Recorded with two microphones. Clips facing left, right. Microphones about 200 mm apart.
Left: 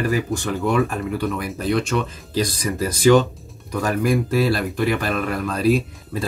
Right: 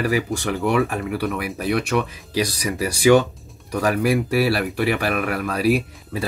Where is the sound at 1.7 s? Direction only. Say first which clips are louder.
Left 1 dB; 65° right (ahead or behind).